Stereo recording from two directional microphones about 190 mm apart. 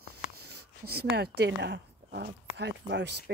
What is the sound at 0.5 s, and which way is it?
Speech, 55° right (ahead or behind).